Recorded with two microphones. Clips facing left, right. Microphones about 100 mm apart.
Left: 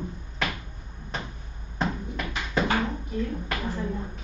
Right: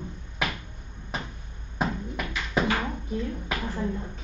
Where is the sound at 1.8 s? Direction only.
5° right (ahead or behind).